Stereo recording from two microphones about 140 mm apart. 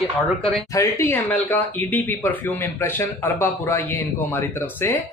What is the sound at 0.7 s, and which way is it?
Speech, 20° left (ahead or behind).